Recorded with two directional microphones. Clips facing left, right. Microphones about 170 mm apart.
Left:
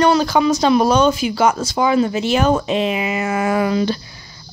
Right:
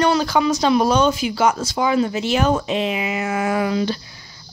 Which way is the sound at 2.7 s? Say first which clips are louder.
Left 3 dB; 40° left (ahead or behind).